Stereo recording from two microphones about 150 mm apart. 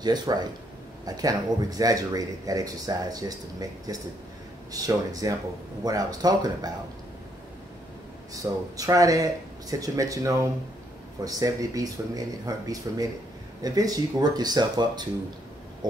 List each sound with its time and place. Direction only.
0.0 s speech: 25° right (ahead or behind)
8.3 s speech: 25° right (ahead or behind)
15.8 s a sound: 25° right (ahead or behind)